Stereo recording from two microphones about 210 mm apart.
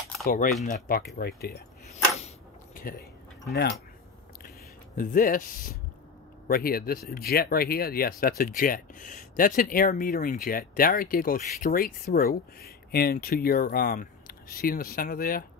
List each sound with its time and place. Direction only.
0.2 s speech: 40° left (ahead or behind)
1.9 s a sound: 30° left (ahead or behind)
4.9 s speech: 40° left (ahead or behind)